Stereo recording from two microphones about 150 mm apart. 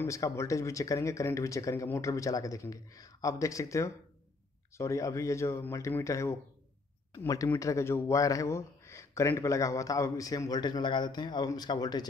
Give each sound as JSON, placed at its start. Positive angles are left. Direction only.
{"t": 0.0, "sound": "speech", "side_deg": 20}
{"t": 7.4, "sound": "speech", "side_deg": 20}